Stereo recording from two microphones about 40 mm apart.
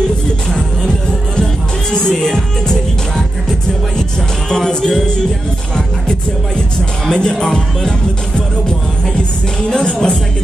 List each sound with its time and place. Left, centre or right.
1.4 s music: centre
4.5 s music: centre
7.1 s music: left
9.7 s music: centre